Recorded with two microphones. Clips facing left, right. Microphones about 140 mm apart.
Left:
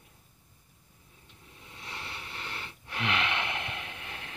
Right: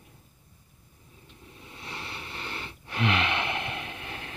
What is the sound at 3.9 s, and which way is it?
Train, 20° right (ahead or behind).